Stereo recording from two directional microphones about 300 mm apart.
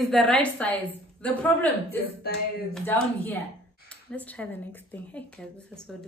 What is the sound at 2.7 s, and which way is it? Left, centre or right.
Speech, centre.